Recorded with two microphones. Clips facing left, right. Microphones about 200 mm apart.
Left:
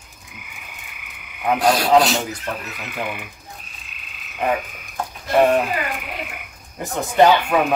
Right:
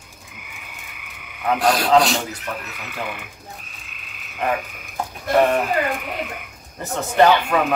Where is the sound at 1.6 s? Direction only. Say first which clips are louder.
Left 1 dB; centre (ahead or behind).